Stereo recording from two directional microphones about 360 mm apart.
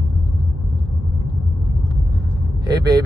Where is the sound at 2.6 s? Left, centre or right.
Centre.